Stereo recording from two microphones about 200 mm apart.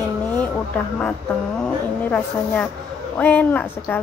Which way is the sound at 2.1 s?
5° left (ahead or behind).